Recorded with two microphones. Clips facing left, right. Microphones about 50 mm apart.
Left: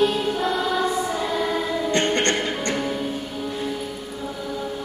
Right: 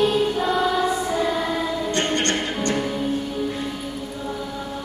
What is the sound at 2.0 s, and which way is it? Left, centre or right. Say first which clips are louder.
Music: left 2 dB; left.